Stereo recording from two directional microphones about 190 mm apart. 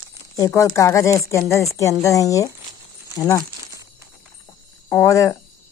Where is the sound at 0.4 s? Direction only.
15° left (ahead or behind).